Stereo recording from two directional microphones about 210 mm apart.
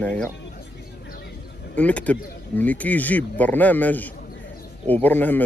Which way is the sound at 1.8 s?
5° left (ahead or behind).